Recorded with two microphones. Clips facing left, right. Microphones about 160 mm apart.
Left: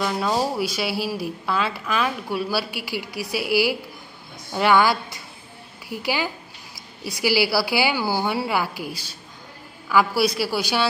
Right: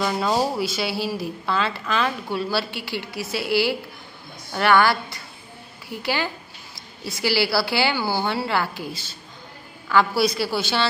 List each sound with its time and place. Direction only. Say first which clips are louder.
0.0 s speech: right 1 dB; centre (ahead or behind)